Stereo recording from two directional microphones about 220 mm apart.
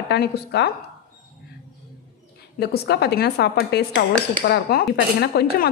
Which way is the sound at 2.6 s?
50° left (ahead or behind).